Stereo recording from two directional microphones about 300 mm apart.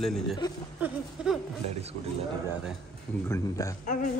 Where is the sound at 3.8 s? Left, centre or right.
Left.